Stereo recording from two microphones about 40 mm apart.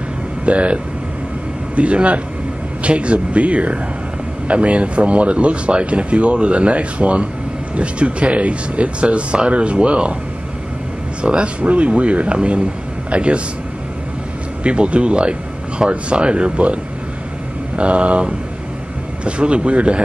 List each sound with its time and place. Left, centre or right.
0.5 s speech: right
1.8 s speech: right
11.2 s speech: right
14.6 s speech: right
17.7 s speech: right
19.2 s speech: right